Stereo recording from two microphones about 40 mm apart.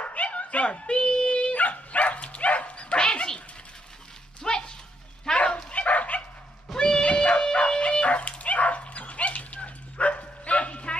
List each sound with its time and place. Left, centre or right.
0.0 s dog: left
4.4 s dog: centre
5.4 s dog: left
6.8 s dog: left